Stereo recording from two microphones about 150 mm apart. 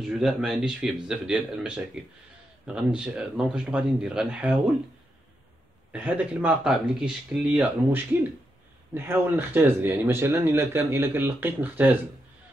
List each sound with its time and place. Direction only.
0.2 s speech: centre (ahead or behind)
5.9 s speech: 10° right (ahead or behind)